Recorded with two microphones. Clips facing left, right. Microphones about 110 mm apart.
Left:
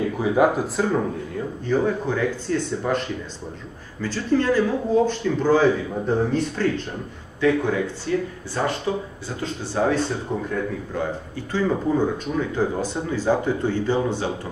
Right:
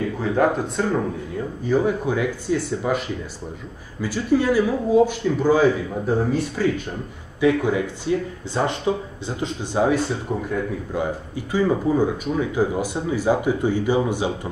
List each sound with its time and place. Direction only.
0.2 s speech: 10° left (ahead or behind)
1.6 s speech: 10° right (ahead or behind)